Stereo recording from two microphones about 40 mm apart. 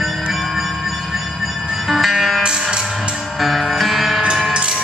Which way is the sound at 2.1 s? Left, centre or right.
Centre.